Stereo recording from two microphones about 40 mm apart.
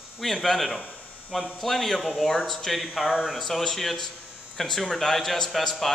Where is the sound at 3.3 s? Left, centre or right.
Centre.